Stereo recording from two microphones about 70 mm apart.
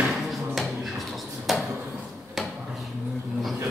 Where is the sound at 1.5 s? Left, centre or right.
Centre.